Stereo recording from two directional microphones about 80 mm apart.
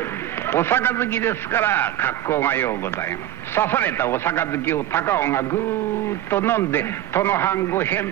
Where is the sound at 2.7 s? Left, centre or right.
Left.